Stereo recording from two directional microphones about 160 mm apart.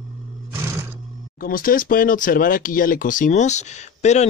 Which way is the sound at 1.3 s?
65° left (ahead or behind).